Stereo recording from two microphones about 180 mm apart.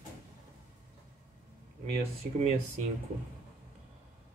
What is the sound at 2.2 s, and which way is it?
Speech, 45° right (ahead or behind).